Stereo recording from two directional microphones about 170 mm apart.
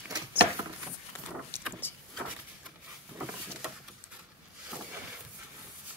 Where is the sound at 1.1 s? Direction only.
10° left (ahead or behind).